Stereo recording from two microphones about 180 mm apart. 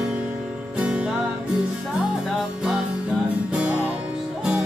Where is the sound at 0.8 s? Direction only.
5° right (ahead or behind).